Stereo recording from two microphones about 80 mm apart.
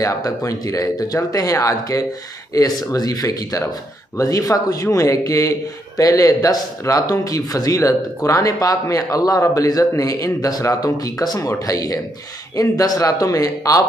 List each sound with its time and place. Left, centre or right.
0.0 s speech: left